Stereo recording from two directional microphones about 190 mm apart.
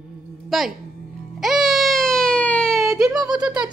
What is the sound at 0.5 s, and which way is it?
Speech, centre (ahead or behind).